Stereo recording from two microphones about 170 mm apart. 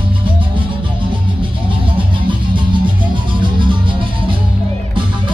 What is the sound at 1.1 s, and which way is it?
Music, 30° right (ahead or behind).